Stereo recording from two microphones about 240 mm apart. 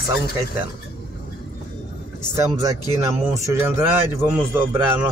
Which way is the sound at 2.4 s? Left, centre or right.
Centre.